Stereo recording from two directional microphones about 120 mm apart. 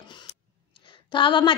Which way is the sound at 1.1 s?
40° left (ahead or behind).